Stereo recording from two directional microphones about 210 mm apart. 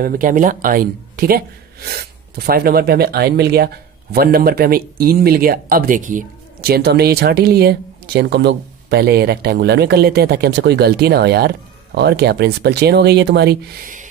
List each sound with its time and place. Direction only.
0.0 s speech: 40° right (ahead or behind)